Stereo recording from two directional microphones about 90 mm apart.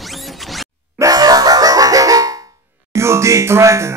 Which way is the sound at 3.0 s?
30° right (ahead or behind).